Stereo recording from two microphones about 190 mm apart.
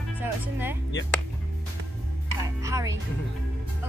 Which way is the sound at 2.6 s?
15° right (ahead or behind).